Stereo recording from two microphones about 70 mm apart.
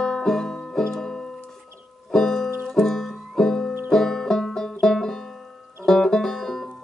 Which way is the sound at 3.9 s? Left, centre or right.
Centre.